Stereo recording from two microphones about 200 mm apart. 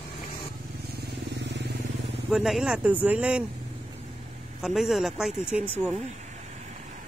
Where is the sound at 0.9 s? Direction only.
60° right (ahead or behind).